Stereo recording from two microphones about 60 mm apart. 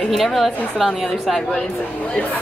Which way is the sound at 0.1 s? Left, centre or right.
Centre.